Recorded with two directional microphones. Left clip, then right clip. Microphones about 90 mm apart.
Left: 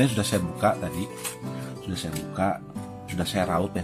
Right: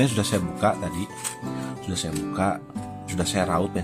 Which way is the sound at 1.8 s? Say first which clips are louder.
Right 4 dB; 45° right (ahead or behind).